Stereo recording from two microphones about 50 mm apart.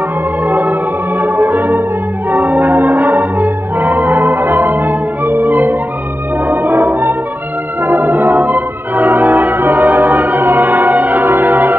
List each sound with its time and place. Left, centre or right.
0.5 s music: right
7.8 s organ: right